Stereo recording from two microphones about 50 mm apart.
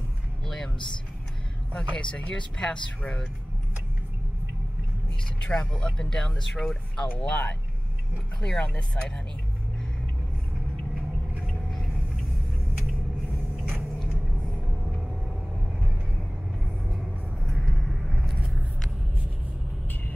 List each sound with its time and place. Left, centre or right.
1.7 s speech: left
5.4 s speech: left
11.4 s vehicle: centre
17.0 s vehicle: centre